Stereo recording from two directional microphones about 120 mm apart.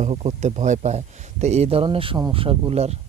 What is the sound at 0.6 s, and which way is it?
Speech, 75° right (ahead or behind).